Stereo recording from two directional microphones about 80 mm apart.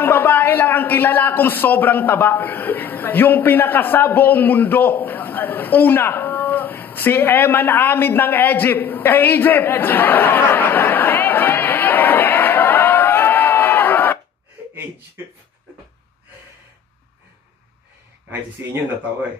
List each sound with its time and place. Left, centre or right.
0.0 s a man's voice: left